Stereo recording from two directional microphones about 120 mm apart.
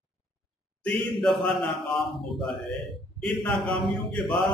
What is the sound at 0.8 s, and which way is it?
Mantra, centre (ahead or behind).